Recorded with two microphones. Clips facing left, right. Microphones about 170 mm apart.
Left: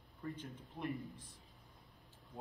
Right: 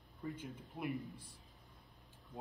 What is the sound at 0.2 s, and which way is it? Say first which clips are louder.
A man's voice: right 1 dB; 10° right (ahead or behind).